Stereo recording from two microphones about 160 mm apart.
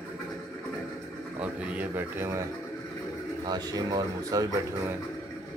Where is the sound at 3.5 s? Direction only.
25° right (ahead or behind).